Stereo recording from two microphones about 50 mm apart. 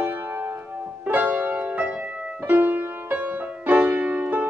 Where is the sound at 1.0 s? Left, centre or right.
Right.